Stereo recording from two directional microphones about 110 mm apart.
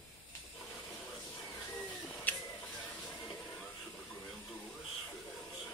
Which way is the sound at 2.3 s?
15° left (ahead or behind).